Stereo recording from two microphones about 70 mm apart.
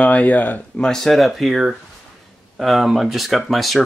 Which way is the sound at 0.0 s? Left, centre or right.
Centre.